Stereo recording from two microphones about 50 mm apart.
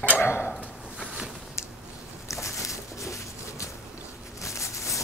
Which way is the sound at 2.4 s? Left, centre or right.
Left.